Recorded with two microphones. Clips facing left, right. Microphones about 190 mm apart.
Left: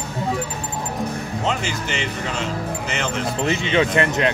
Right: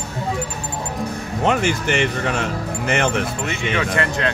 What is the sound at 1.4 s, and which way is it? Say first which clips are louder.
Speech: right 7 dB; 55° right (ahead or behind).